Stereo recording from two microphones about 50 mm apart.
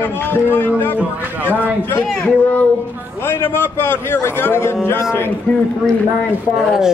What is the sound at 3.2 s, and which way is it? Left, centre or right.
A man's voice, left.